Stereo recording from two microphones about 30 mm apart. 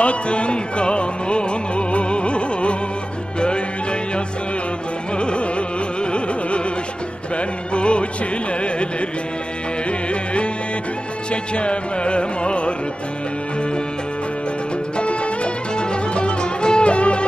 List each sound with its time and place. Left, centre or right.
0.0 s music: left
5.1 s carnatic music: left
6.1 s music: left
9.8 s music: left
11.5 s music: left
15.0 s music: left